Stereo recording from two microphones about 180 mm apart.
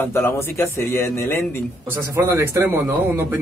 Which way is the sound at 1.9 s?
15° right (ahead or behind).